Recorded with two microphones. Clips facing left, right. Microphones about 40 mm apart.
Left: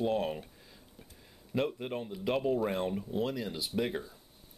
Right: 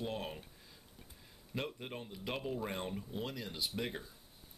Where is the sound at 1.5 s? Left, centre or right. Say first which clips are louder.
Left 9 dB; centre.